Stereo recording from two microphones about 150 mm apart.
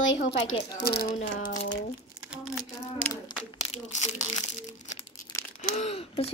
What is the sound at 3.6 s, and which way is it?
Crumpling, 50° left (ahead or behind).